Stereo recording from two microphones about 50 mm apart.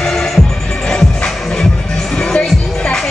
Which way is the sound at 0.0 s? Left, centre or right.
Centre.